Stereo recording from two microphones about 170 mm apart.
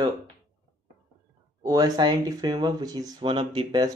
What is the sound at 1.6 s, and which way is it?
Speech, 20° right (ahead or behind).